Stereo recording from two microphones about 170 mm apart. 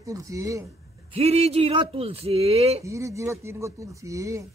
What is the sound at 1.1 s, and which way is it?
Speech, 40° right (ahead or behind).